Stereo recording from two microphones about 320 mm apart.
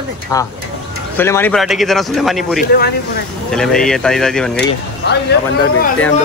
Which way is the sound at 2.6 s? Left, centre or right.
Left.